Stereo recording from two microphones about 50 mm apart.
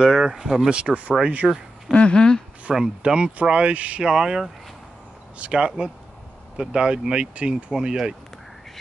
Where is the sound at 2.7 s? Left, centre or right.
Centre.